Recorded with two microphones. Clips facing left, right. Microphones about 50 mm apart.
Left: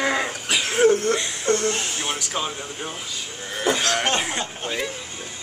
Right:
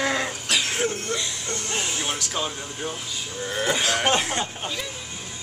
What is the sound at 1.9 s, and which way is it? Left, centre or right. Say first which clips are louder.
Speech: left 1 dB; centre.